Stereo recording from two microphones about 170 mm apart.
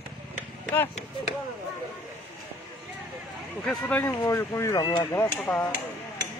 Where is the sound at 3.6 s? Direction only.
10° left (ahead or behind).